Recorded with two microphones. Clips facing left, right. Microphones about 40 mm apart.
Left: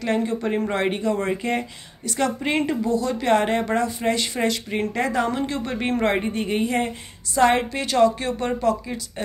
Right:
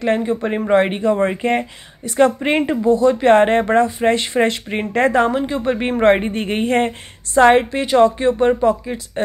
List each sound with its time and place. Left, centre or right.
0.0 s speech: right
5.6 s speech: right
6.0 s a woman's voice: right
7.3 s speech: right